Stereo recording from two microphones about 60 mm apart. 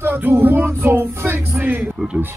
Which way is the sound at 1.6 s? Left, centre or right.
Right.